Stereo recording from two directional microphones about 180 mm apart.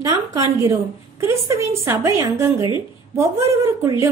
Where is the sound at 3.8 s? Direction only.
15° right (ahead or behind).